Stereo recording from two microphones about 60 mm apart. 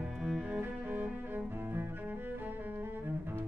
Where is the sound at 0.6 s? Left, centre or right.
Right.